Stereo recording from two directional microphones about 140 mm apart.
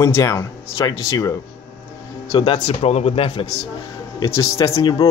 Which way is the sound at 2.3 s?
40° left (ahead or behind).